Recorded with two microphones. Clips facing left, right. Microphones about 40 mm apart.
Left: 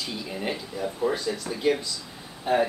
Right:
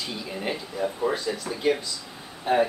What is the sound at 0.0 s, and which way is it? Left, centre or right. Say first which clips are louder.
Speech: even; centre.